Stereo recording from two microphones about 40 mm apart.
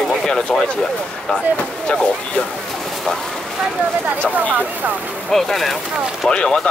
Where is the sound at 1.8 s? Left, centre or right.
Left.